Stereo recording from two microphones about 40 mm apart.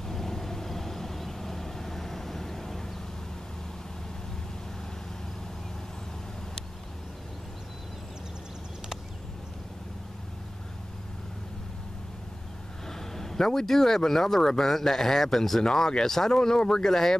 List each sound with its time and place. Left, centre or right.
0.1 s vehicle: centre
13.1 s speech: centre